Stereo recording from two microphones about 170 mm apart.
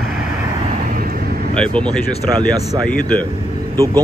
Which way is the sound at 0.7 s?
65° right (ahead or behind).